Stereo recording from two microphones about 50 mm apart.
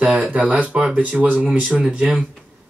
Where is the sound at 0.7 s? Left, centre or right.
Centre.